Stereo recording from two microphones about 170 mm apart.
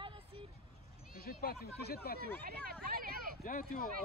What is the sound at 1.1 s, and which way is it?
Speech, 60° left (ahead or behind).